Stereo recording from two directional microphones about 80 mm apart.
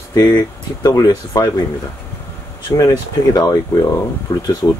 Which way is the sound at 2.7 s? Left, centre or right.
Left.